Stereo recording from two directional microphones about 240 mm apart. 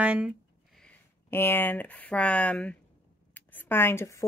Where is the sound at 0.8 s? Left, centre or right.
Centre.